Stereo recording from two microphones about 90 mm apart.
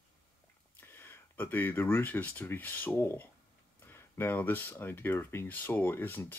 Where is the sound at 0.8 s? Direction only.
25° left (ahead or behind).